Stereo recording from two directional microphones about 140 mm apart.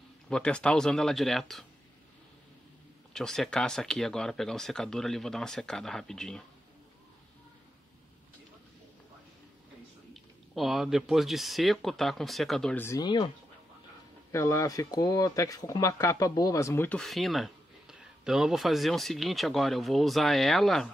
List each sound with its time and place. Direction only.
0.3 s speech: 5° left (ahead or behind)
3.1 s speech: 5° left (ahead or behind)
10.1 s speech: centre (ahead or behind)
12.7 s speech: 20° left (ahead or behind)
13.0 s speech: 30° left (ahead or behind)
14.3 s speech: 20° left (ahead or behind)
17.0 s speech: centre (ahead or behind)